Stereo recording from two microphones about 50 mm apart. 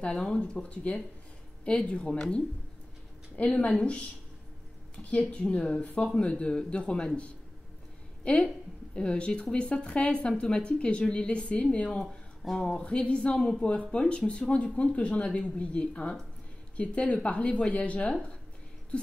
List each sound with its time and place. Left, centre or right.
0.0 s speech: centre
3.3 s speech: left
4.9 s speech: left
8.2 s a woman's voice: left